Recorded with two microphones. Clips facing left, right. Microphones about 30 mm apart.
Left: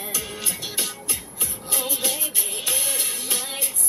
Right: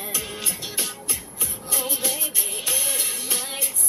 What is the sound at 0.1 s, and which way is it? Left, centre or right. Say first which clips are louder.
Music: right 1 dB; right.